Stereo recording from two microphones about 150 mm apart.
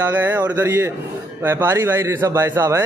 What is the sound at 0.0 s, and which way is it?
A man's voice, 15° right (ahead or behind).